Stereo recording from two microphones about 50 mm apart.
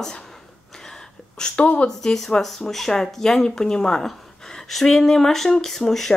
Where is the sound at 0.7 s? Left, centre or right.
Centre.